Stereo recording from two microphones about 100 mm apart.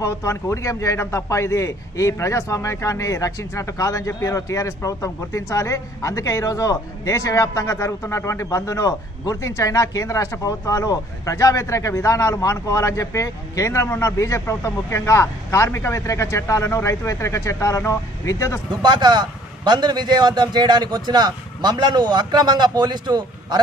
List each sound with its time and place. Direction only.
0.0 s a man's voice: 30° left (ahead or behind)
18.8 s a man's voice: 50° right (ahead or behind)